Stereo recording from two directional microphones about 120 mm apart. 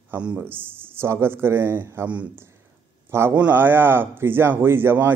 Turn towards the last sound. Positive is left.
turn(degrees=-20)  # may be behind; listen again after turning